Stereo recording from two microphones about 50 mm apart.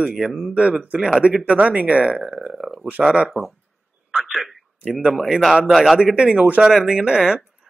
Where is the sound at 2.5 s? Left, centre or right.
Centre.